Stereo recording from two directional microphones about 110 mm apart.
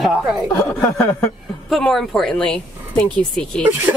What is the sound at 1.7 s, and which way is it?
Speech, centre (ahead or behind).